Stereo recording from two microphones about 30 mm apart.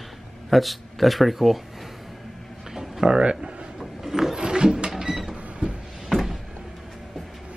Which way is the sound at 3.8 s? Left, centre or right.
Centre.